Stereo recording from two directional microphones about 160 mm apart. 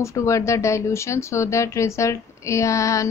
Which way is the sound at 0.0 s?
20° left (ahead or behind).